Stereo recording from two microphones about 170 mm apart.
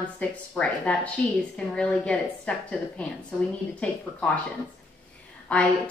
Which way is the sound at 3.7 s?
5° left (ahead or behind).